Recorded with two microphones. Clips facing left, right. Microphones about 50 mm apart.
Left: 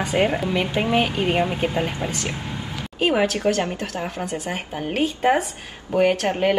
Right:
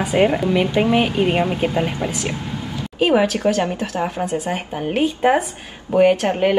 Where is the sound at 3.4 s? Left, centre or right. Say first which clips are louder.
Right 3 dB; right.